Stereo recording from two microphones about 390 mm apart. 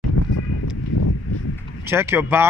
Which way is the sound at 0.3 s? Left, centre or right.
Left.